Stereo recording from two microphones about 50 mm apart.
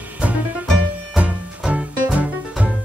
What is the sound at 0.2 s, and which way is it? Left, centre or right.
Music, right.